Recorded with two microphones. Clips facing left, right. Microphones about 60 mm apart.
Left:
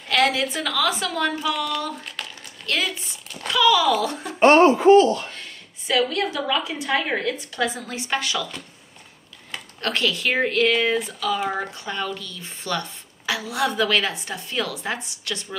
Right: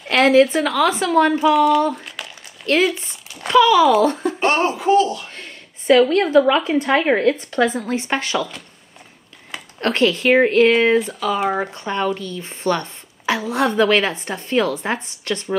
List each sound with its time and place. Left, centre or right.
0.1 s a woman's voice: right
1.9 s crumpling: centre
2.6 s speech: right
2.9 s a sound: centre
3.5 s a woman's voice: right
4.4 s speech: left
5.9 s a woman's voice: right
9.8 s a woman's voice: right